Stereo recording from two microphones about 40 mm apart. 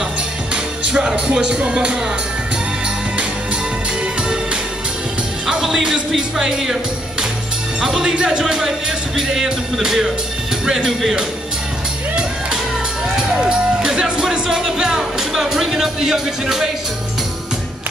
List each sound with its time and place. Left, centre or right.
0.8 s music: right
5.5 s music: centre
6.1 s speech: centre
13.1 s music: centre
14.5 s speech: centre